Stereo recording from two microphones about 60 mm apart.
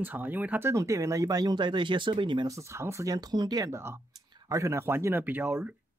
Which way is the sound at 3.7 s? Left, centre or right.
Right.